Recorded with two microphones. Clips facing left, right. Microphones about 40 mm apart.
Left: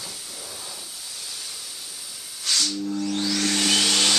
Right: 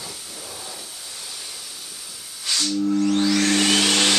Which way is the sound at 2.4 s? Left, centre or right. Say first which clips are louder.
Even; centre.